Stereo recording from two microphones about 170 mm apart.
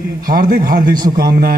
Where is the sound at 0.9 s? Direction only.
25° right (ahead or behind).